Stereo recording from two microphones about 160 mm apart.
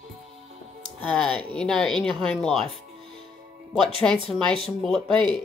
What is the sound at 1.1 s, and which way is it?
Speech, 5° left (ahead or behind).